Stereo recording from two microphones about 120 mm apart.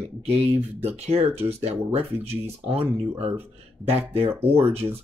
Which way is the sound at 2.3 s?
55° right (ahead or behind).